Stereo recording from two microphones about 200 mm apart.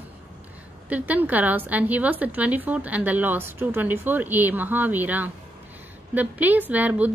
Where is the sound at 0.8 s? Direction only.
10° right (ahead or behind).